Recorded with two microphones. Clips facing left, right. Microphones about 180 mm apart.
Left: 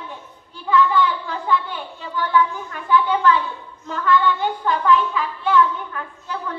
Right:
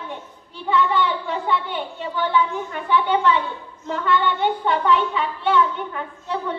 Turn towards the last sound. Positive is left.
turn(degrees=-25)  # may be behind; listen again after turning